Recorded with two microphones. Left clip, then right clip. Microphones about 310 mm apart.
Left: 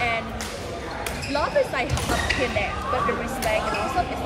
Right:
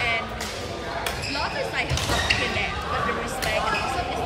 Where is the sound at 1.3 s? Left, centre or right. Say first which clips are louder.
Left 8 dB; centre.